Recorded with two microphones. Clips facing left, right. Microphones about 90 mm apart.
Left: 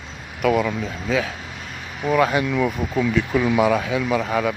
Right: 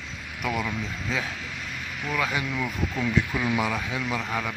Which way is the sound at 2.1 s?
50° left (ahead or behind).